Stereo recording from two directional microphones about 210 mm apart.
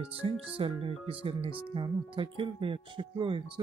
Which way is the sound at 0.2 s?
25° right (ahead or behind).